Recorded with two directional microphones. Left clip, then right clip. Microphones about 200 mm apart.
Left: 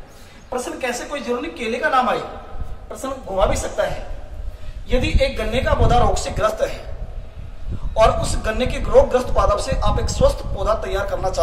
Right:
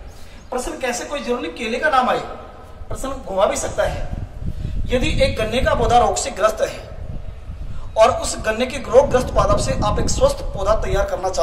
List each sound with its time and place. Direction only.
0.5 s a woman's voice: 10° left (ahead or behind)
4.8 s speech: 10° right (ahead or behind)
7.9 s speech: 15° right (ahead or behind)